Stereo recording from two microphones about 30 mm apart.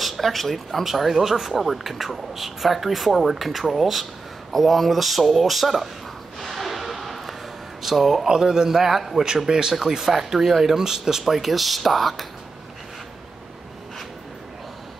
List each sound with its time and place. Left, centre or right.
0.0 s speech: centre
6.4 s a sound: centre
7.8 s speech: centre
8.3 s a man's voice: right
10.0 s a man's voice: centre